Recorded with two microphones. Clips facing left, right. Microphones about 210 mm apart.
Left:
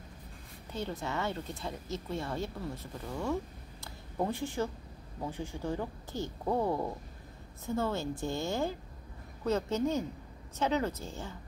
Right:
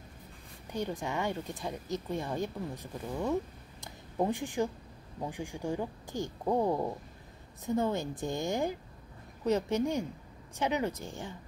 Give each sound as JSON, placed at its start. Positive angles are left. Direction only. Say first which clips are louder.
{"t": 0.7, "sound": "speech", "louder": "right 2 dB", "side_deg": -15}
{"t": 3.8, "sound": "a sound", "louder": "right 3 dB", "side_deg": -15}
{"t": 5.2, "sound": "speech", "louder": "right 1 dB", "side_deg": -15}